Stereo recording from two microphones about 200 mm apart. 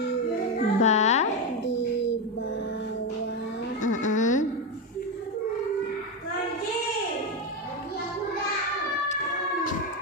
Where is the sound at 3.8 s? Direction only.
40° left (ahead or behind).